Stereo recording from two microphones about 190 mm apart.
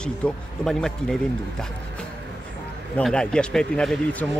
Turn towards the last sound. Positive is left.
turn(degrees=5)  # may be behind; listen again after turning